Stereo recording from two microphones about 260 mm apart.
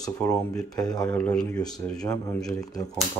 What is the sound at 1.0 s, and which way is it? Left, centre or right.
Speech, centre.